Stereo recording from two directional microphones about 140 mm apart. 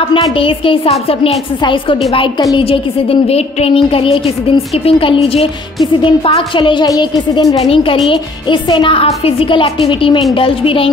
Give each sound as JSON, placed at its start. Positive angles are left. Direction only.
{"t": 0.1, "sound": "a woman's voice", "side_deg": 40}
{"t": 7.5, "sound": "a woman's voice", "side_deg": 45}
{"t": 8.1, "sound": "a woman's voice", "side_deg": 35}